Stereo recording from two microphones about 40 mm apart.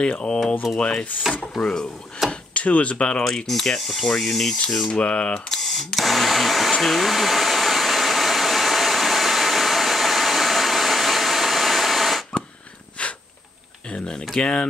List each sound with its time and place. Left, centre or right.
0.7 s speech: left
1.3 s speech: centre
1.6 s speech: centre
2.2 s chop: centre
2.5 s speech: left
3.3 s speech: centre
4.8 s speech: left
5.5 s camera: centre
5.9 s hair dryer: centre
13.0 s a sound: left
14.3 s speech: left